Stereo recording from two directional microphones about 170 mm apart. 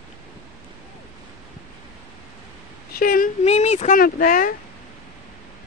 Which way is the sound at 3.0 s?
55° left (ahead or behind).